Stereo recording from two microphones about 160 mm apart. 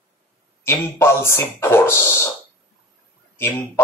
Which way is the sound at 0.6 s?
15° left (ahead or behind).